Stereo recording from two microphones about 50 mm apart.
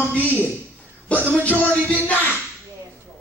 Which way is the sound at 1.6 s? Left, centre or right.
Left.